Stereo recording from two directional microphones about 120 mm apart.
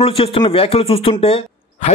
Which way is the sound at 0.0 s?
50° left (ahead or behind).